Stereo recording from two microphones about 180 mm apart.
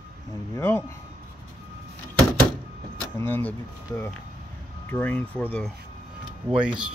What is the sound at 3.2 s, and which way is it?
Speech, 10° left (ahead or behind).